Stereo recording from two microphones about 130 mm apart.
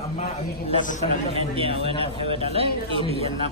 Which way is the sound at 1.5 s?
50° right (ahead or behind).